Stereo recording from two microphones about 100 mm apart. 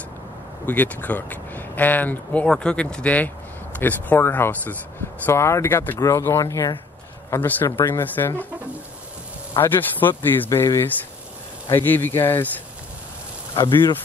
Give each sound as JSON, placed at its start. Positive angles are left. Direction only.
{"t": 0.7, "sound": "speech", "side_deg": 20}
{"t": 7.2, "sound": "speech", "side_deg": 20}
{"t": 9.5, "sound": "speech", "side_deg": 20}
{"t": 13.6, "sound": "speech", "side_deg": 55}